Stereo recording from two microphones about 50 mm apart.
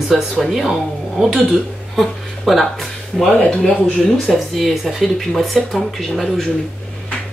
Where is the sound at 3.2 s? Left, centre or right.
Centre.